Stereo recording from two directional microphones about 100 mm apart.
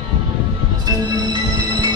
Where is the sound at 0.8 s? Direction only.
45° right (ahead or behind).